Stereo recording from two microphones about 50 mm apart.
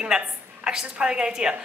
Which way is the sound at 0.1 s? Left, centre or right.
Centre.